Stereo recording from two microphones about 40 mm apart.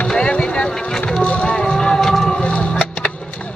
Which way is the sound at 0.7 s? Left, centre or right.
Centre.